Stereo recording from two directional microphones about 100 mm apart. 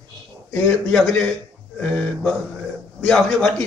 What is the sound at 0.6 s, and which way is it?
A man's voice, 5° left (ahead or behind).